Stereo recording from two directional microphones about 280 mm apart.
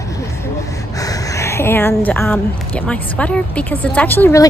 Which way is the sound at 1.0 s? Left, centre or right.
Centre.